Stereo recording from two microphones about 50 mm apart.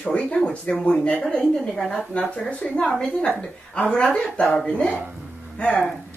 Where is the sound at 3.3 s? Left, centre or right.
Left.